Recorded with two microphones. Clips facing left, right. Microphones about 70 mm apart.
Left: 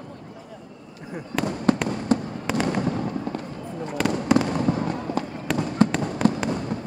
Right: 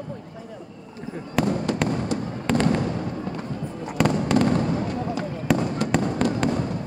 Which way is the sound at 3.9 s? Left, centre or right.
Centre.